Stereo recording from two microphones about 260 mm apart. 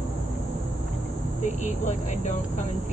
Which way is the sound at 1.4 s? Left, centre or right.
Left.